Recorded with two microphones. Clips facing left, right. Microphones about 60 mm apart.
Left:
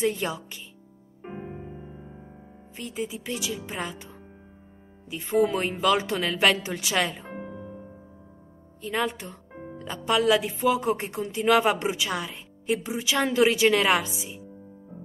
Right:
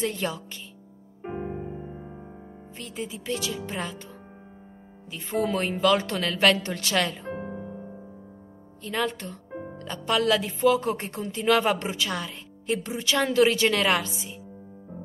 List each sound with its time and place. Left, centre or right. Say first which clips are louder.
0.0 s speech: left 2 dB; centre
1.2 s music: right 5 dB; centre
2.7 s speech: left 3 dB; centre
5.2 s speech: left 3 dB; centre
7.4 s music: right 3 dB; centre
8.8 s speech: even; centre